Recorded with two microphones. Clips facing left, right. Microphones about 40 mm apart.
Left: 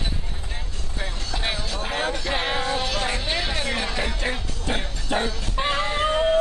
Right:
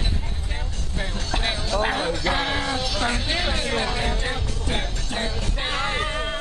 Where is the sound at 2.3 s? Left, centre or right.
Centre.